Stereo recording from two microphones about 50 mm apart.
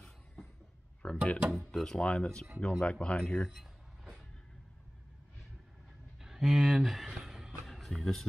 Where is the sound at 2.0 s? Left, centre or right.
Left.